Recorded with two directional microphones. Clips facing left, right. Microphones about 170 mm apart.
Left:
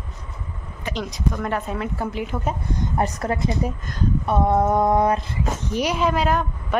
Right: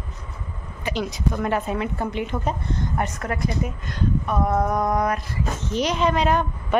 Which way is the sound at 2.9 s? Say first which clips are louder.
Left 5 dB; 35° left (ahead or behind).